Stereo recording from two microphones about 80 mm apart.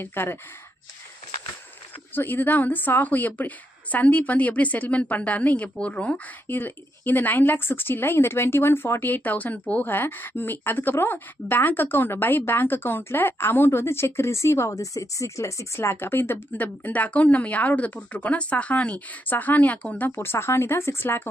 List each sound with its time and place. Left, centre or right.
0.0 s speech: left
2.1 s speech: left
20.2 s speech: left